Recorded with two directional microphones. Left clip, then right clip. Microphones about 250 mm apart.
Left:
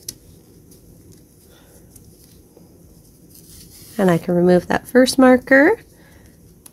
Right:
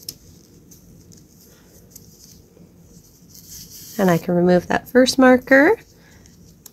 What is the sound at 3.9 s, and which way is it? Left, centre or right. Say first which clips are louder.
Speech: left 1 dB; centre.